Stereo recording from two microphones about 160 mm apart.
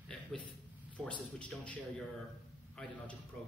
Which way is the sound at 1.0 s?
5° left (ahead or behind).